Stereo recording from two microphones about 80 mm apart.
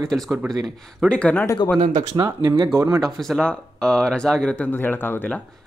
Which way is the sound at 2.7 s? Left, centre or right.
Right.